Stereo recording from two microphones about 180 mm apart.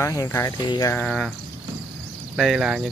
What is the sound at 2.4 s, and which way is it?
Speech, centre (ahead or behind).